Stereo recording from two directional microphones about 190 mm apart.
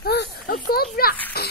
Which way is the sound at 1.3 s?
55° left (ahead or behind).